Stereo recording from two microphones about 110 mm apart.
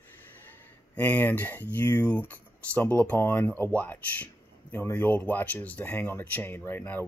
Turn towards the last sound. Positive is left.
turn(degrees=20)  # may be behind; listen again after turning